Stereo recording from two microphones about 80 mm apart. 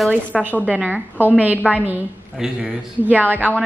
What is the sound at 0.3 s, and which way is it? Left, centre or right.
Speech, centre.